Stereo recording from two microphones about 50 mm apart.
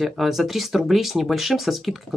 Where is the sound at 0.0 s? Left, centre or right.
Centre.